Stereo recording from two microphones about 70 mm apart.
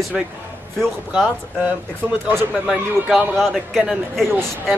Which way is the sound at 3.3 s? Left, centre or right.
Centre.